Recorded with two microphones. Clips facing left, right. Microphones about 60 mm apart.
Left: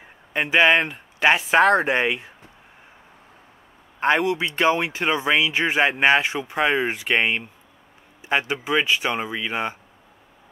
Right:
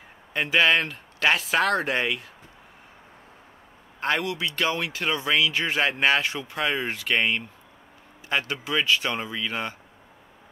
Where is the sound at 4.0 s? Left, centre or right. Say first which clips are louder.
Left 6 dB; left.